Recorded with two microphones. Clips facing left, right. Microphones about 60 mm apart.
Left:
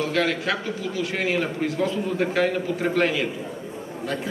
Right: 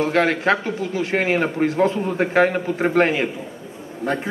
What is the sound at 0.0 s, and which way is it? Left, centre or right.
A man's voice, right.